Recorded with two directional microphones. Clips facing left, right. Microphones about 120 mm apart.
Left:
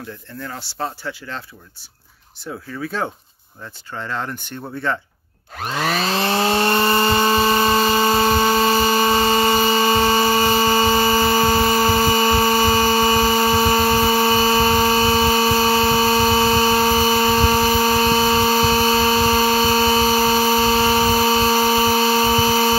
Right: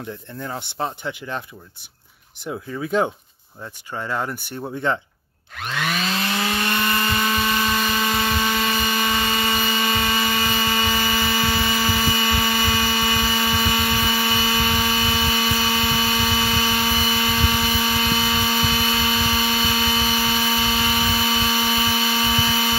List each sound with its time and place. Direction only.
0.4 s speech: 20° right (ahead or behind)
2.4 s speech: 20° right (ahead or behind)
5.6 s chainsaw: 35° left (ahead or behind)